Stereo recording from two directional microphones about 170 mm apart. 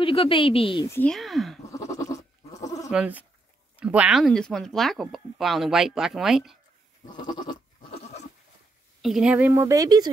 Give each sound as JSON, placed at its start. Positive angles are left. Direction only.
{"t": 0.0, "sound": "speech", "side_deg": 30}
{"t": 0.8, "sound": "speech", "side_deg": 10}
{"t": 1.1, "sound": "speech", "side_deg": 0}
{"t": 1.6, "sound": "goat", "side_deg": 20}
{"t": 2.9, "sound": "speech", "side_deg": -10}
{"t": 7.1, "sound": "goat", "side_deg": 25}
{"t": 9.0, "sound": "speech", "side_deg": -5}
{"t": 9.5, "sound": "speech", "side_deg": -15}